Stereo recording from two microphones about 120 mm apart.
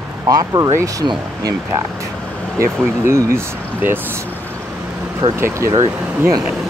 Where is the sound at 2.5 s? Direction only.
25° right (ahead or behind).